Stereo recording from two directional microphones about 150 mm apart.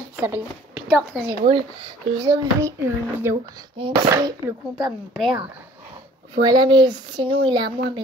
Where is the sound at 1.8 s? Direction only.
25° right (ahead or behind).